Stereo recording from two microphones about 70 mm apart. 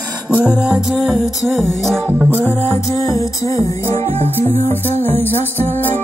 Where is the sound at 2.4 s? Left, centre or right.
Left.